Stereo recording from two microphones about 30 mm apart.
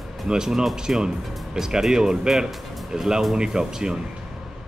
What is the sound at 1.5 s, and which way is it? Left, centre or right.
Speech, centre.